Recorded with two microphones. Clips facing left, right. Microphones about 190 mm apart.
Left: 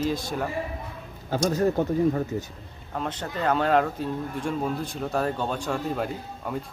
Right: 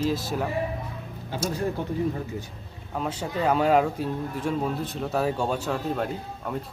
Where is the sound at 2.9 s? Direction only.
5° right (ahead or behind).